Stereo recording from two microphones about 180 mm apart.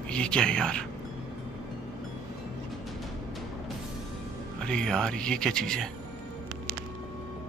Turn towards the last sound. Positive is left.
turn(degrees=5)  # may be behind; listen again after turning